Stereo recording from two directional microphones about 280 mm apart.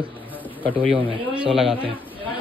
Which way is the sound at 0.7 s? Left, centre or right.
Centre.